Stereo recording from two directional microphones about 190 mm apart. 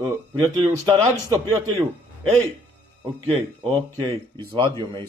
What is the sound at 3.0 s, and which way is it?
Speech, 30° right (ahead or behind).